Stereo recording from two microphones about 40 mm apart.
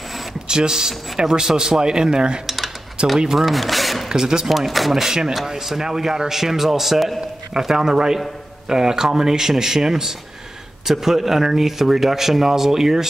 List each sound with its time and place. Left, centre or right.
0.5 s speech: centre
2.4 s a sound: centre
3.0 s speech: right
3.3 s speech: centre
4.1 s speech: centre
4.5 s speech: centre
7.5 s speech: centre